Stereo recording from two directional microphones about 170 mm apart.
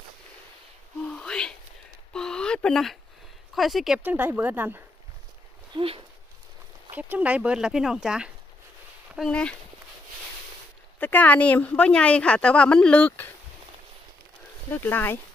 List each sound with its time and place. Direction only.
1.0 s a sound: 5° left (ahead or behind)
2.1 s speech: 5° left (ahead or behind)
4.0 s speech: 10° right (ahead or behind)
5.8 s speech: 30° right (ahead or behind)
6.9 s speech: 10° right (ahead or behind); by 9.6 s 5° left (ahead or behind)
11.0 s a woman's voice: 10° left (ahead or behind)
14.7 s a woman's voice: 10° left (ahead or behind)